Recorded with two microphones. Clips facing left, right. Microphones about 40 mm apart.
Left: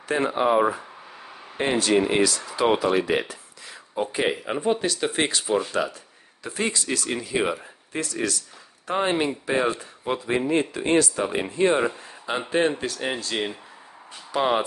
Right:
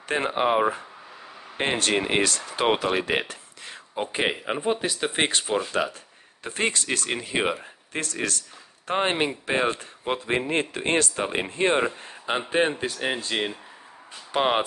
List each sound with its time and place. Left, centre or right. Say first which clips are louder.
0.1 s speech: left 2 dB; right
1.6 s speech: left 3 dB; right
4.0 s speech: left 2 dB; right
5.2 s speech: even; right
6.4 s speech: right 1 dB; right